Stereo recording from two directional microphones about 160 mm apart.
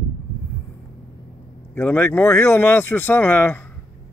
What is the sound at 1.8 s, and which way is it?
Speech, 15° left (ahead or behind).